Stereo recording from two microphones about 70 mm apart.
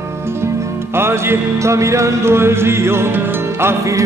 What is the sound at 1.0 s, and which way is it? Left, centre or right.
Music, right.